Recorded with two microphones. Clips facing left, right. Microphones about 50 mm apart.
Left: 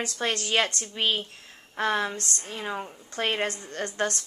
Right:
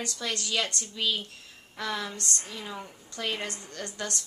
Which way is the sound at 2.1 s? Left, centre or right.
Right.